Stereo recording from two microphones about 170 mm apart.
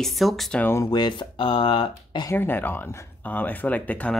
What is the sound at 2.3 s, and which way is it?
Speech, 10° left (ahead or behind).